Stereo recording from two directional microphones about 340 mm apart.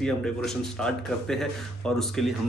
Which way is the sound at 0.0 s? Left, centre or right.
Centre.